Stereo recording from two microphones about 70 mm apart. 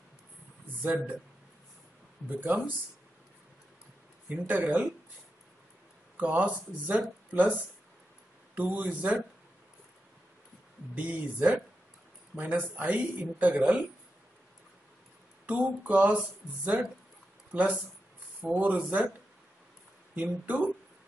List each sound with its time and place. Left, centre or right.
0.8 s speech: right
2.2 s speech: right
4.3 s speech: right
6.1 s speech: right
8.5 s speech: right
11.0 s speech: right
15.5 s speech: right
17.5 s speech: right
20.2 s speech: right